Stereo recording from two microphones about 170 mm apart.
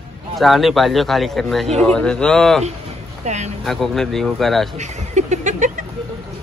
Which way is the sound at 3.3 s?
40° right (ahead or behind).